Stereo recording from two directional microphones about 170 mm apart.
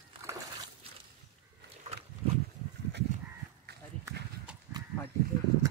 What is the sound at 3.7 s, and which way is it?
Run, 70° right (ahead or behind).